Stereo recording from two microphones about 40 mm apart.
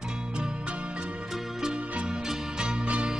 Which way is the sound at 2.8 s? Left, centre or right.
Right.